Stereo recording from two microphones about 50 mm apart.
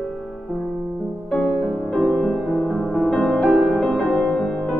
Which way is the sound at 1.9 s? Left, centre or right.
Centre.